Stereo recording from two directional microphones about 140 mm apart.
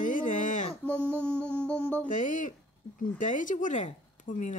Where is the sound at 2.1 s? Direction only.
65° left (ahead or behind).